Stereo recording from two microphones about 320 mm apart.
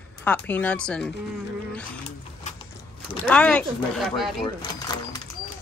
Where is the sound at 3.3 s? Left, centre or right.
Centre.